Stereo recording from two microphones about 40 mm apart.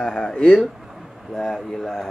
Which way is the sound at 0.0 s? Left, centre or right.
Left.